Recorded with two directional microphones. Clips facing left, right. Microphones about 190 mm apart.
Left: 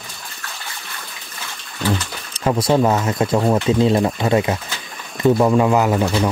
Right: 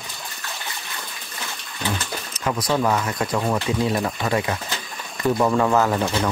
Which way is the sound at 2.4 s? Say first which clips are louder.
Left 6 dB; 30° left (ahead or behind).